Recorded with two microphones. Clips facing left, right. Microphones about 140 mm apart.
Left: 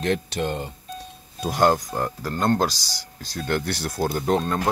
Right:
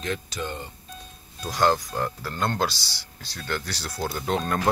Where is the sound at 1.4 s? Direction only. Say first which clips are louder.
Left 3 dB; 50° left (ahead or behind).